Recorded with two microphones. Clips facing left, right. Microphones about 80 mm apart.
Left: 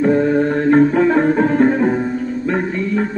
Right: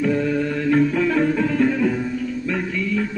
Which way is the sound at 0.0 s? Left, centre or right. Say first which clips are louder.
Left 6 dB; left.